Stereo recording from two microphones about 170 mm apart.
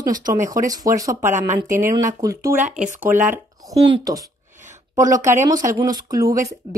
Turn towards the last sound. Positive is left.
turn(degrees=-20)  # may be behind; listen again after turning